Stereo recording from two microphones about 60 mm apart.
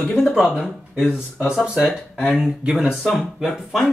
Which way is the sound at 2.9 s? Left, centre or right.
Centre.